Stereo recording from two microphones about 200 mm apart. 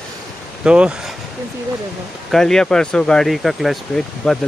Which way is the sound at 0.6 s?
5° right (ahead or behind).